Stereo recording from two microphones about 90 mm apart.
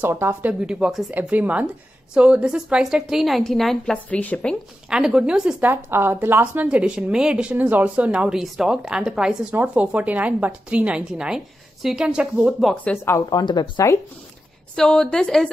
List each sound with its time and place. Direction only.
0.0 s a woman's voice: 25° right (ahead or behind); by 4.6 s 15° left (ahead or behind)
4.8 s a woman's voice: 10° right (ahead or behind)
5.6 s a woman's voice: 25° right (ahead or behind)
13.3 s speech: 45° left (ahead or behind)
14.8 s a woman's voice: 10° left (ahead or behind)